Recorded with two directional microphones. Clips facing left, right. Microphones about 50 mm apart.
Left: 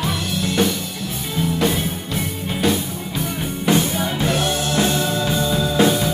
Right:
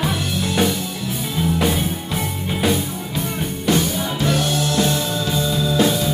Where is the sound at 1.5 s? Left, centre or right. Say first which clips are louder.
Left 1 dB; centre.